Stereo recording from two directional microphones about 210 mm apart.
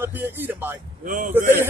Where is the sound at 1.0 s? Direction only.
40° right (ahead or behind).